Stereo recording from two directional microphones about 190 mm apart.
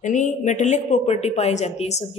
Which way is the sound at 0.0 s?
40° left (ahead or behind).